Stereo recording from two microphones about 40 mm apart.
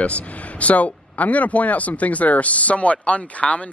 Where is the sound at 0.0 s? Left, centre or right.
Left.